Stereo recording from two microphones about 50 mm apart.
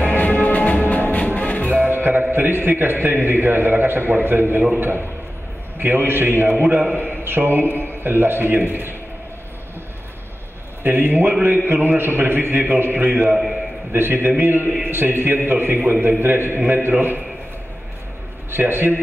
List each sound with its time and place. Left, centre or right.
0.0 s music: left
1.7 s music: right
2.3 s a man's voice: right
6.6 s a man's voice: right
7.2 s a man's voice: right
10.8 s a man's voice: right
13.2 s a man's voice: centre
13.9 s a man's voice: right
16.6 s a man's voice: right
18.5 s a man's voice: right